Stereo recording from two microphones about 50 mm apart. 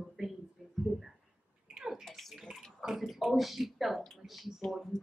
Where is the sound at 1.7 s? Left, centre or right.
Centre.